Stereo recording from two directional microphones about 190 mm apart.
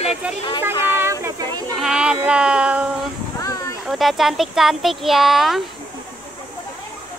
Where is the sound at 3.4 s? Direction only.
15° left (ahead or behind).